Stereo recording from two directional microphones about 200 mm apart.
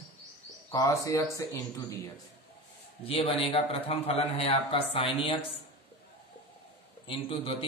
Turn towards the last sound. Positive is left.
turn(degrees=25)  # may be behind; listen again after turning